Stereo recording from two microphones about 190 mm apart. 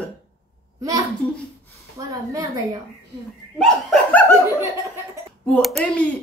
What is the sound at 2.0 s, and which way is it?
Speech, 15° right (ahead or behind).